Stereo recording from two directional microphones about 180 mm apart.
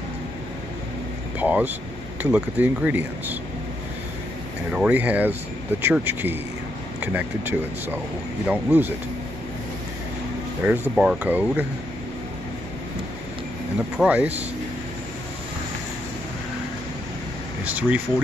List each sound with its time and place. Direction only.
1.4 s speech: 10° right (ahead or behind)
4.7 s speech: 10° right (ahead or behind)
10.6 s speech: 10° right (ahead or behind)
13.9 s speech: 10° right (ahead or behind)
17.6 s speech: 10° right (ahead or behind)